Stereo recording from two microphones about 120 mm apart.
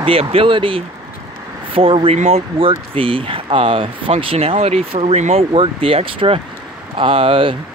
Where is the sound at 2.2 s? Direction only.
60° right (ahead or behind).